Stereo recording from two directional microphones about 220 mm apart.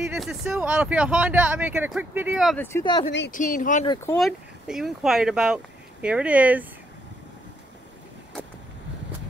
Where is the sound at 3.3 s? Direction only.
35° left (ahead or behind).